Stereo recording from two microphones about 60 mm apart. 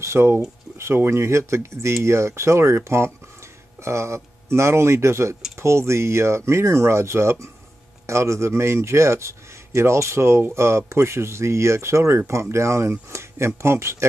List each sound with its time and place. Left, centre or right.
0.0 s speech: right